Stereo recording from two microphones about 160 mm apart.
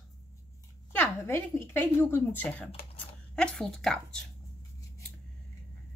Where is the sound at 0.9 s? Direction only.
15° left (ahead or behind).